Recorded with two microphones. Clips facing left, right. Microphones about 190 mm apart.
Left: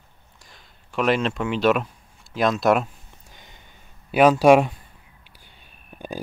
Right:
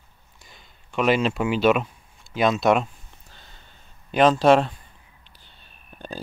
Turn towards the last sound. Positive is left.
turn(degrees=10)  # may be behind; listen again after turning